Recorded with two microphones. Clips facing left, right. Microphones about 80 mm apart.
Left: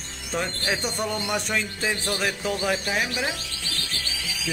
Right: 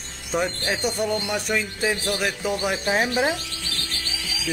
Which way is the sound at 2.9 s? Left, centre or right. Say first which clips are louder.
Right 5 dB; right.